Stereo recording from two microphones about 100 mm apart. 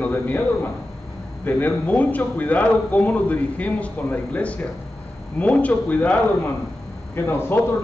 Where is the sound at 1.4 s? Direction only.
20° left (ahead or behind).